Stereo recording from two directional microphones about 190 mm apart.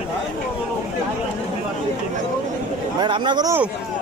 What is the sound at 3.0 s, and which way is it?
Speech, 25° right (ahead or behind).